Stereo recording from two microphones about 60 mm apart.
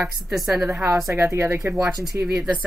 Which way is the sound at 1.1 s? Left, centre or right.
Right.